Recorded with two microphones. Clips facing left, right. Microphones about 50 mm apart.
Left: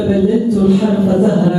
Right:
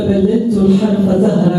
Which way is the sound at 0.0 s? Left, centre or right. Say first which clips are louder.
Even; centre.